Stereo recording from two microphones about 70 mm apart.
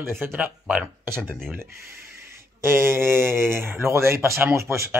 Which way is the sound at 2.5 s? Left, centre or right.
Right.